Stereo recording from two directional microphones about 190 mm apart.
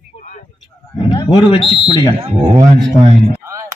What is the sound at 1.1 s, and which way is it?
Speech, 25° left (ahead or behind).